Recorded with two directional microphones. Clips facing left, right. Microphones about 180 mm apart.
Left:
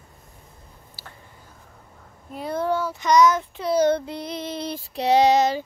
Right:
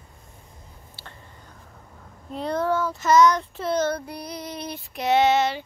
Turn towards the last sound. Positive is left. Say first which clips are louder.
# left 2 dB
turn(degrees=40)  # may be behind; listen again after turning